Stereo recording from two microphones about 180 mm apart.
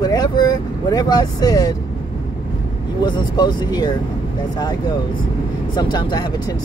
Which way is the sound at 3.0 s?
25° left (ahead or behind).